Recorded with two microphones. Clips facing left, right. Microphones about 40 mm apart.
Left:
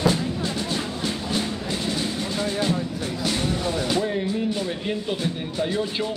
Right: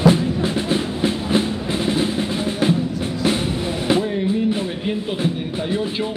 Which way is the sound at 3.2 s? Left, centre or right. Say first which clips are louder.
Right 4 dB; right.